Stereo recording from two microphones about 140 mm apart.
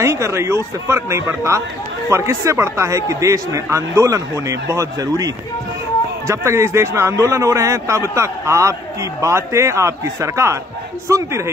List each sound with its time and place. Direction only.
0.0 s a man's voice: 20° right (ahead or behind)